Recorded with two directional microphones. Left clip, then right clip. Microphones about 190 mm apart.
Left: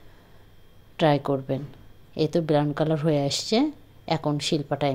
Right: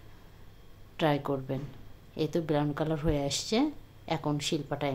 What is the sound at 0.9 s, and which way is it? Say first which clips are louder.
A woman's voice: left 7 dB; 25° left (ahead or behind).